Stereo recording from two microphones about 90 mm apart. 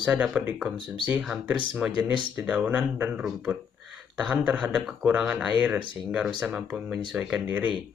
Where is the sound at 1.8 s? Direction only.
10° right (ahead or behind).